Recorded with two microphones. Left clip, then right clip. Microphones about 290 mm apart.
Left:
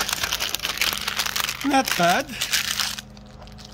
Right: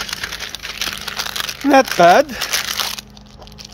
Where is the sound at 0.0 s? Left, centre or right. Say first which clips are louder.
Even; left.